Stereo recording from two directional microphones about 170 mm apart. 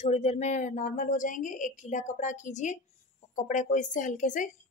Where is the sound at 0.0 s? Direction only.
40° left (ahead or behind).